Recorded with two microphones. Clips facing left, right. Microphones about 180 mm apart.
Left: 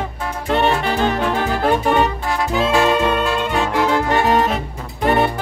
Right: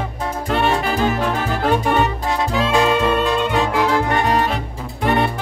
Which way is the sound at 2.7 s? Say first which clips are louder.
Even; 20° right (ahead or behind).